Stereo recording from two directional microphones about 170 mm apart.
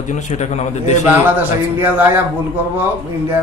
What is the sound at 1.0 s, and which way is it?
Speech, 10° right (ahead or behind).